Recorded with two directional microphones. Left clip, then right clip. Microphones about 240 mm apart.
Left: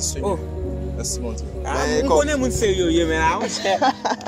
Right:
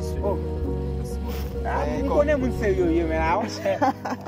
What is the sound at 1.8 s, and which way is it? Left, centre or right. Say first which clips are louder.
Speech: left 5 dB; left.